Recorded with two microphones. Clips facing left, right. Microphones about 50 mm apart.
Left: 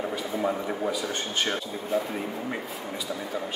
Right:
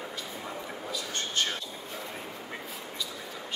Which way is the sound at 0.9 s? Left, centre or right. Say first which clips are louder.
Left 3 dB; centre.